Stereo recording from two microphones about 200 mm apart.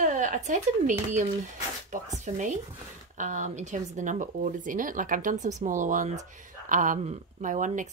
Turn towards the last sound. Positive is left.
turn(degrees=-40)  # may be behind; listen again after turning